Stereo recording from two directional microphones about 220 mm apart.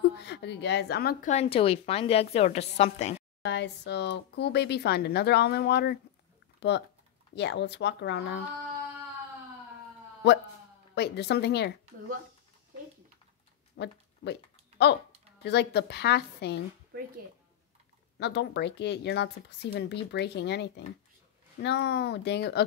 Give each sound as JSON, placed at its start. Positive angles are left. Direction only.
{"t": 0.2, "sound": "a woman's voice", "side_deg": 50}
{"t": 1.3, "sound": "a woman's voice", "side_deg": 25}
{"t": 3.4, "sound": "speech", "side_deg": 50}
{"t": 10.2, "sound": "speech", "side_deg": 50}
{"t": 13.8, "sound": "speech", "side_deg": 45}
{"t": 15.4, "sound": "speech", "side_deg": 50}
{"t": 16.9, "sound": "speech", "side_deg": -45}
{"t": 18.1, "sound": "speech", "side_deg": 50}